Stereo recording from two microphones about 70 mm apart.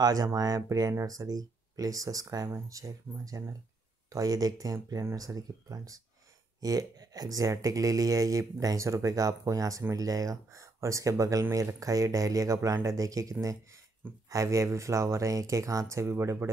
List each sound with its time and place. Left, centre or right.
0.0 s speech: right
4.1 s speech: right